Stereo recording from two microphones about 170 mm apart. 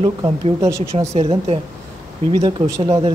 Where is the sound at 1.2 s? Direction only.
35° right (ahead or behind).